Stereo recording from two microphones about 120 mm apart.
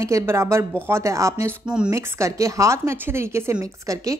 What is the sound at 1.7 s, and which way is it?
Speech, 10° right (ahead or behind).